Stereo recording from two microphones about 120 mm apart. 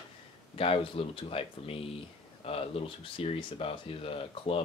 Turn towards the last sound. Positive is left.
turn(degrees=50)  # may be behind; listen again after turning